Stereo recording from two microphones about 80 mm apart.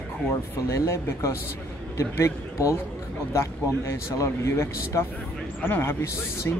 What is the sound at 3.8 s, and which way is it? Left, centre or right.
A man's voice, left.